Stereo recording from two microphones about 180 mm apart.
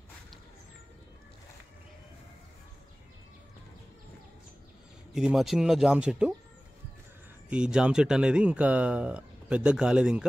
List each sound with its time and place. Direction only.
5.1 s speech: centre (ahead or behind)
7.4 s speech: 5° right (ahead or behind)